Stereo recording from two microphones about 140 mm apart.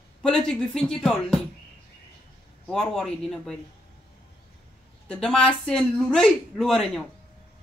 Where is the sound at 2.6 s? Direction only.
5° left (ahead or behind).